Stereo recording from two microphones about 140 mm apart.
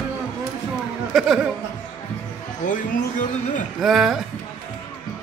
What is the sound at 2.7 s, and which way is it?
Speech, 65° left (ahead or behind).